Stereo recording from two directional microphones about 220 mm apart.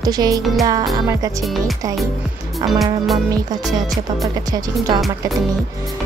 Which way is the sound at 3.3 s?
15° right (ahead or behind).